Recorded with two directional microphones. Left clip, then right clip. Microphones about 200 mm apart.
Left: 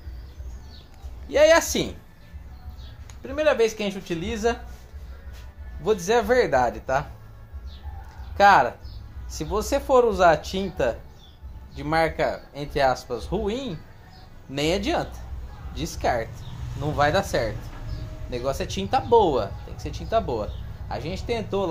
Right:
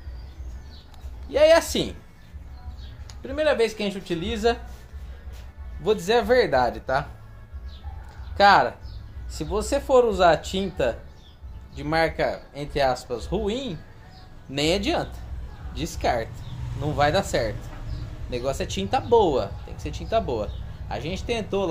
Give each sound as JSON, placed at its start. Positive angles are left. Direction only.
{"t": 1.3, "sound": "a woman's voice", "side_deg": 20}
{"t": 3.2, "sound": "speech", "side_deg": 5}
{"t": 6.0, "sound": "speech", "side_deg": 0}
{"t": 8.4, "sound": "speech", "side_deg": 0}